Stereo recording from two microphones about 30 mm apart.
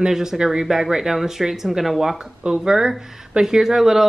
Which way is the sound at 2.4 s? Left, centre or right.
Right.